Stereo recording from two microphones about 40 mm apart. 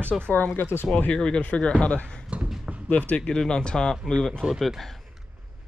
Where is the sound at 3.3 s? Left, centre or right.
Centre.